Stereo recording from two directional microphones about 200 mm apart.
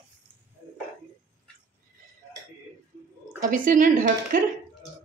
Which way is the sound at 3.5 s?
40° right (ahead or behind).